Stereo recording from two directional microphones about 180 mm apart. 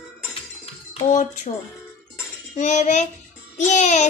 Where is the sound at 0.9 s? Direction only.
45° left (ahead or behind).